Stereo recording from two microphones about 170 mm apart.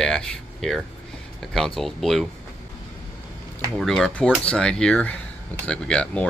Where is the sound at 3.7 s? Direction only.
Centre (ahead or behind).